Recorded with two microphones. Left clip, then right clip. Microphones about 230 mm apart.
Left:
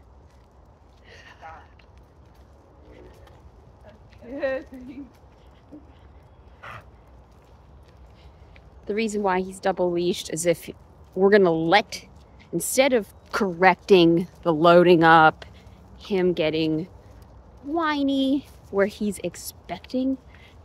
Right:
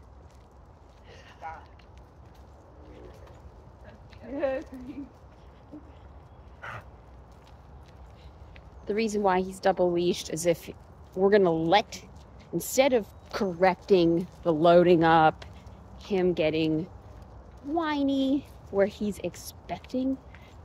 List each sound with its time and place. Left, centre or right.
4.4 s speech: left
8.8 s a woman's voice: centre